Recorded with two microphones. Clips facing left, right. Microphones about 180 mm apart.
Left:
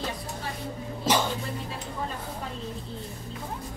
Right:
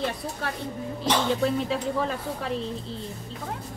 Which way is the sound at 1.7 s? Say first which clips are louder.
Right 8 dB; 90° right.